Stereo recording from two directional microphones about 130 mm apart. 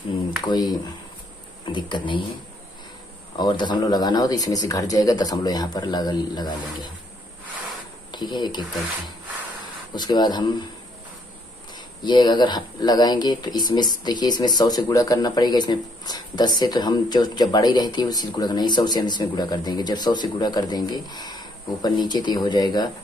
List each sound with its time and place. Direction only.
0.5 s speech: 30° left (ahead or behind)
3.3 s speech: 35° left (ahead or behind)
8.1 s speech: 35° left (ahead or behind)
9.9 s speech: 35° left (ahead or behind)
12.0 s speech: 35° left (ahead or behind)